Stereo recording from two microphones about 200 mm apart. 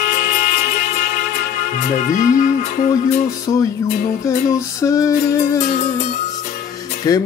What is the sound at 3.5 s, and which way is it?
Music, 20° left (ahead or behind).